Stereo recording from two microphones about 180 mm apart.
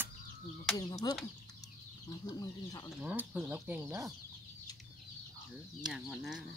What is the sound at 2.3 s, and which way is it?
Speech, 20° left (ahead or behind).